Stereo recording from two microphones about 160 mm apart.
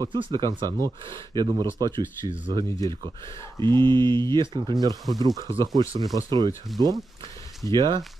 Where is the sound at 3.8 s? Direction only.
30° right (ahead or behind).